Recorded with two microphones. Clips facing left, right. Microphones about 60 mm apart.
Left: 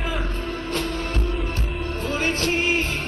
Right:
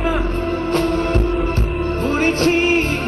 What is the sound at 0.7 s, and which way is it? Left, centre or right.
Music, right.